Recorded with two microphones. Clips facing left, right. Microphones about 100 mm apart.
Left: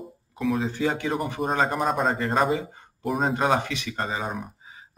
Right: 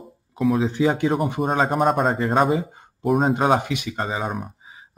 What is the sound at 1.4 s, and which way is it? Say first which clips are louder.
Speech: right 3 dB; 5° right (ahead or behind).